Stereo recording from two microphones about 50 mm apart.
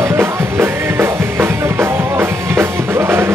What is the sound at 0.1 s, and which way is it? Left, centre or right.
Music, right.